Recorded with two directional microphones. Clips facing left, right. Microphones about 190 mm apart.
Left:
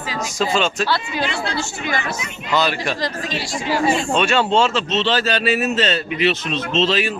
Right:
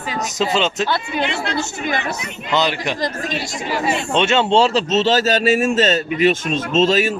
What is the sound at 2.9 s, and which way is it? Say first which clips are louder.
Speech: right 2 dB; 50° right (ahead or behind).